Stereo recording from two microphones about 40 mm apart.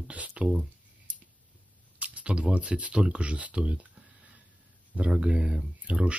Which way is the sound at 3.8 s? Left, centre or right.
Right.